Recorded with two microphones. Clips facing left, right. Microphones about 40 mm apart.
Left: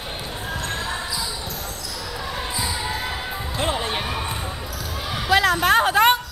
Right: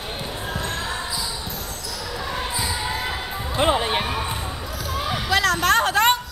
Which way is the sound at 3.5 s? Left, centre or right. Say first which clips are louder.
Right 5 dB; centre.